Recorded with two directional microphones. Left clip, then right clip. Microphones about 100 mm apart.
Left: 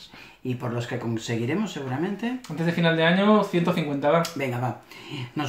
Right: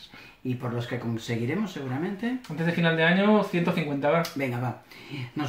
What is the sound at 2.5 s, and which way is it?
Speech, 20° right (ahead or behind).